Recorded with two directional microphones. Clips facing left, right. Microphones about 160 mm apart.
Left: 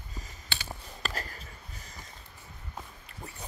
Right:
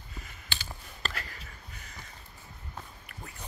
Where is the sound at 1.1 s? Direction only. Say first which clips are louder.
Left 3 dB; 40° left (ahead or behind).